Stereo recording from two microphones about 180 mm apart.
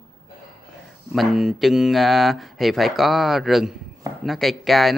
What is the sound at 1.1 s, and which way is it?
Speech, centre (ahead or behind).